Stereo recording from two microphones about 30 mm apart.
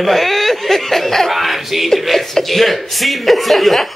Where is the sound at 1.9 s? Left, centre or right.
Centre.